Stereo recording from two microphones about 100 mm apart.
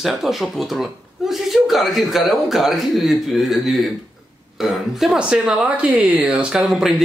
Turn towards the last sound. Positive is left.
turn(degrees=-5)  # may be behind; listen again after turning